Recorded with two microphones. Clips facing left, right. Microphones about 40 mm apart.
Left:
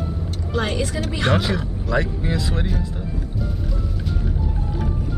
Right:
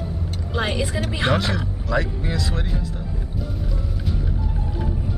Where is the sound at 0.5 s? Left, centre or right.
Centre.